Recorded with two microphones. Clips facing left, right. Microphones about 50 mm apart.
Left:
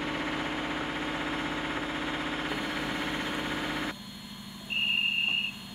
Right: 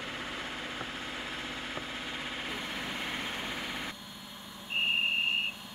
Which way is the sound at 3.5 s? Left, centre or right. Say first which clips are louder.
Left 5 dB; left.